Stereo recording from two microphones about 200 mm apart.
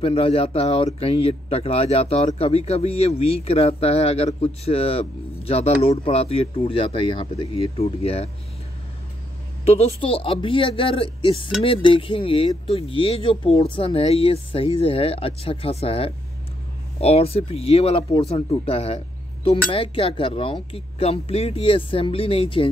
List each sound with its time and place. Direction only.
0.0 s speech: 30° left (ahead or behind)
9.7 s speech: 30° left (ahead or behind)